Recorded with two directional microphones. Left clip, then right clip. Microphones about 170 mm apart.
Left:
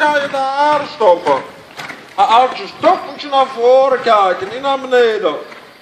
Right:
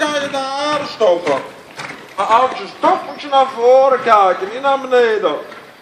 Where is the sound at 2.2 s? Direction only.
50° left (ahead or behind).